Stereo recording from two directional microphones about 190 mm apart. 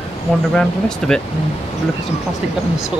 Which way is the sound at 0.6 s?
5° left (ahead or behind).